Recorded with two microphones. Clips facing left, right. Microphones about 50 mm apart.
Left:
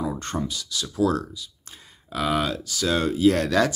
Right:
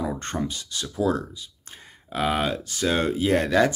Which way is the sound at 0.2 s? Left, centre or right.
Right.